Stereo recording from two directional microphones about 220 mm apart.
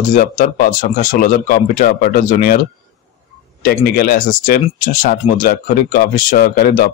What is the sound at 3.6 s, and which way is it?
Speech, 40° left (ahead or behind).